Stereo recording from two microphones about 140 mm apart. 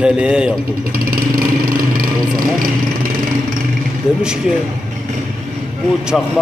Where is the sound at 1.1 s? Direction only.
90° right.